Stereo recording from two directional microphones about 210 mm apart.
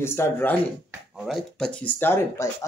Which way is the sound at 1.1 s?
Centre (ahead or behind).